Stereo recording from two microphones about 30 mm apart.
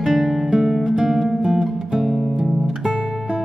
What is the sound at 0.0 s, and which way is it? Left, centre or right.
Guitar, centre.